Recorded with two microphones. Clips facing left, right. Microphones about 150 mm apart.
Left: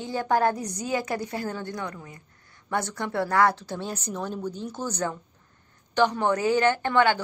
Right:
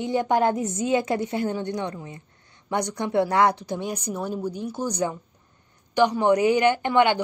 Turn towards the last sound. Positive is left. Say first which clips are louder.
# right 2 dB
turn(degrees=-15)  # may be behind; listen again after turning